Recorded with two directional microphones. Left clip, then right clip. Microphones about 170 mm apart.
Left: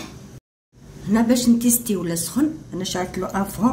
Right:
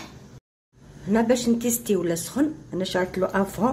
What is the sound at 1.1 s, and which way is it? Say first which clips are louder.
Speech: left 2 dB; 55° right (ahead or behind).